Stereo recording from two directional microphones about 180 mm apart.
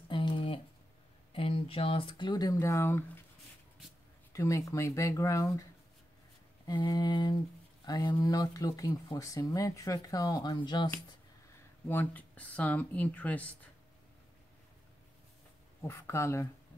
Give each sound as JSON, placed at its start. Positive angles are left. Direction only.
{"t": 0.1, "sound": "a sound", "side_deg": 25}
{"t": 1.3, "sound": "speech", "side_deg": 30}
{"t": 4.3, "sound": "speech", "side_deg": 15}
{"t": 11.9, "sound": "speech", "side_deg": 10}
{"t": 15.9, "sound": "speech", "side_deg": 15}